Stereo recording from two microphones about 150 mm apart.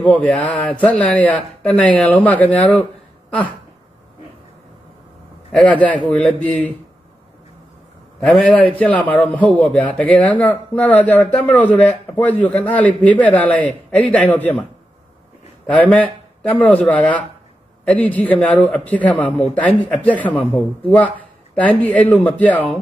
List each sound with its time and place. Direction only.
0.0 s speech: 10° left (ahead or behind)
5.5 s speech: 5° left (ahead or behind)
8.2 s speech: 5° left (ahead or behind)
15.6 s speech: 10° left (ahead or behind)